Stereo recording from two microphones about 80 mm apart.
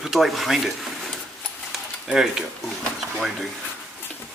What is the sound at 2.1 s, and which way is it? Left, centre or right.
Speech, centre.